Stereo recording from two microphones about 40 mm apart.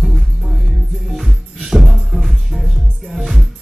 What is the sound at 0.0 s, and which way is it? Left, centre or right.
Music, centre.